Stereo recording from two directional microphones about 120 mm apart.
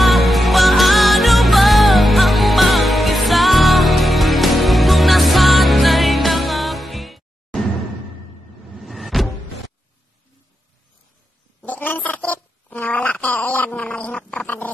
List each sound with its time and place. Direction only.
0.0 s music: centre (ahead or behind)
8.7 s power windows: centre (ahead or behind)
11.6 s a sound: 15° left (ahead or behind)